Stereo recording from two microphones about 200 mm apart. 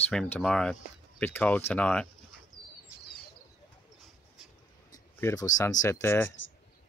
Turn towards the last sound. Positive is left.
turn(degrees=10)  # may be behind; listen again after turning